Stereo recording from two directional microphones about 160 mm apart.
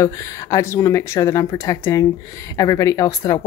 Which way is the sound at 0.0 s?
20° left (ahead or behind).